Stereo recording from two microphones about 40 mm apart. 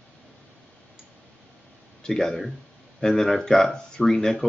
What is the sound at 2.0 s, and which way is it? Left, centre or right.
Speech, centre.